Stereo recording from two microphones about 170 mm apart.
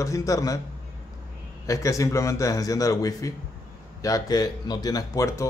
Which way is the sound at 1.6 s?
20° left (ahead or behind).